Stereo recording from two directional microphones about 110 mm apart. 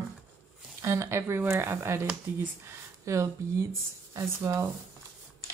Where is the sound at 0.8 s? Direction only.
25° right (ahead or behind).